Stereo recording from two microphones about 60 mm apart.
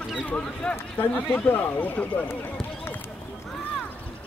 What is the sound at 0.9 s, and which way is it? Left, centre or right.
Speech, left.